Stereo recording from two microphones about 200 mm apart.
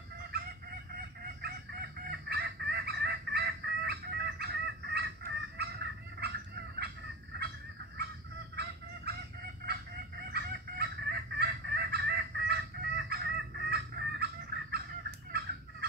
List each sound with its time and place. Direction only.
0.3 s fowl: 50° right (ahead or behind)
0.9 s chicken: 50° right (ahead or behind)
9.1 s fowl: 55° right (ahead or behind)
10.3 s fowl: 50° right (ahead or behind)